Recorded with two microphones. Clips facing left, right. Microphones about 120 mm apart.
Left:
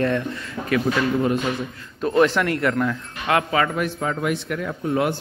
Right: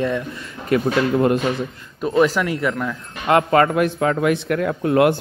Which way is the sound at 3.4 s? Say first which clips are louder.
Right 6 dB; 45° right (ahead or behind).